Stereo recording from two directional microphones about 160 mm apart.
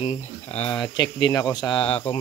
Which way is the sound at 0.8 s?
30° left (ahead or behind).